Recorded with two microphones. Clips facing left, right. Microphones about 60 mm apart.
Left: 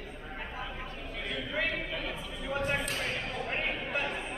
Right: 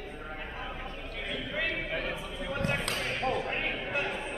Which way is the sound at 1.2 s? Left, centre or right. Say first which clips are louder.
Left 1 dB; centre.